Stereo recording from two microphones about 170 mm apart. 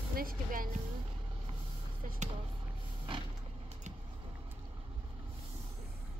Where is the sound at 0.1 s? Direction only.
60° right (ahead or behind).